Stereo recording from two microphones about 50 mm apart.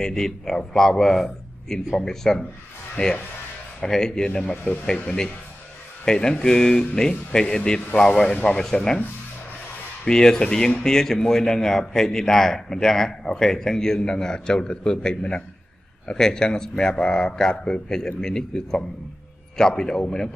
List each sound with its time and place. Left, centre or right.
0.0 s speech: centre
3.0 s speech: left
3.8 s speech: centre
10.0 s speech: centre